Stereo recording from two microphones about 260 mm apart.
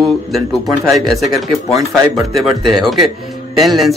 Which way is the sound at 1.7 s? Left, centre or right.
Centre.